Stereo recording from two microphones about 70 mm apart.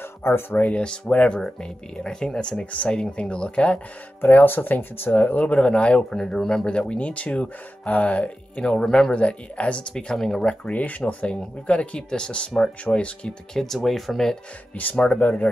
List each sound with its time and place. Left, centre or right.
0.2 s speech: left
0.7 s speech: centre
4.2 s speech: left; by 10.5 s centre
10.6 s speech: left
13.6 s speech: centre
14.8 s speech: centre